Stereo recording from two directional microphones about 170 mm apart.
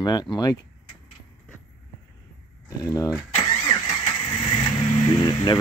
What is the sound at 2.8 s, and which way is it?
Speech, 20° left (ahead or behind).